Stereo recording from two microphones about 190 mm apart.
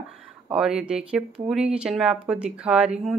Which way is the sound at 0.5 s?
5° right (ahead or behind).